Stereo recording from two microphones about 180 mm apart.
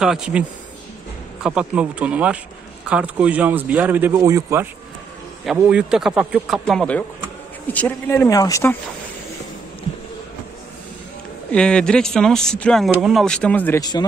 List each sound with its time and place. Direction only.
0.0 s speech: 5° right (ahead or behind)
5.4 s speech: 5° right (ahead or behind); by 8.7 s 15° left (ahead or behind)
11.5 s speech: 5° left (ahead or behind)
13.7 s speech: 20° left (ahead or behind)